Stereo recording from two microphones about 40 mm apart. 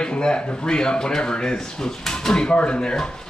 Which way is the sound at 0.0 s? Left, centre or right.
Left.